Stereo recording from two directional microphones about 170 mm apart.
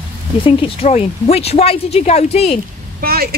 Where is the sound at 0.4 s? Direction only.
30° left (ahead or behind).